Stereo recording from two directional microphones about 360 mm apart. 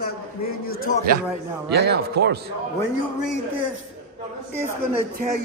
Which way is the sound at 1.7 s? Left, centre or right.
Right.